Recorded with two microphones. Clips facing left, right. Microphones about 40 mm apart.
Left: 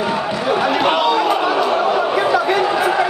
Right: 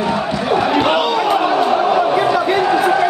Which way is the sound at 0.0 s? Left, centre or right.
Centre.